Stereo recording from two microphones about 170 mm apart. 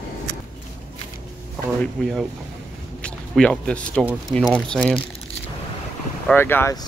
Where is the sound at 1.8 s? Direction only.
Centre (ahead or behind).